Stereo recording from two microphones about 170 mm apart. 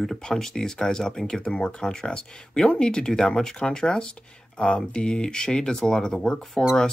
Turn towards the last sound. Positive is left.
turn(degrees=5)  # may be behind; listen again after turning